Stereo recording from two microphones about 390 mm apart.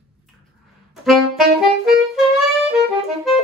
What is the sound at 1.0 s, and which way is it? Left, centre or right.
Saxophone, centre.